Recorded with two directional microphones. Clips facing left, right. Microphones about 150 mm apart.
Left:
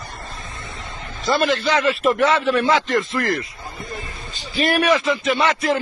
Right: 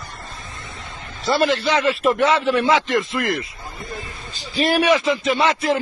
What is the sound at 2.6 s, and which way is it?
Speech, centre (ahead or behind).